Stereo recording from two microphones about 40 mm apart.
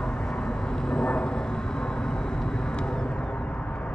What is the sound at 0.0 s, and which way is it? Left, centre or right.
Vehicle, centre.